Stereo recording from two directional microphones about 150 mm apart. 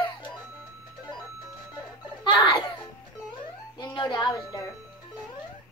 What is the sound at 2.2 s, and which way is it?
Giggle, 35° left (ahead or behind).